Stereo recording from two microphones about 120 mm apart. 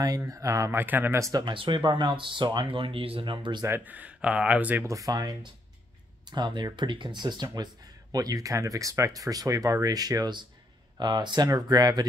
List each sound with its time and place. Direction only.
0.0 s speech: 30° right (ahead or behind)
1.3 s speech: 40° right (ahead or behind)
3.6 s speech: 15° right (ahead or behind)
4.8 s speech: 30° right (ahead or behind)